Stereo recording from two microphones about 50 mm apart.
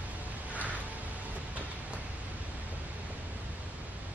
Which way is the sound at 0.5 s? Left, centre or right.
Right.